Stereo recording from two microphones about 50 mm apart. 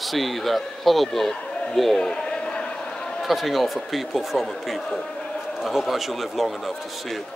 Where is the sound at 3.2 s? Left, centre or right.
Centre.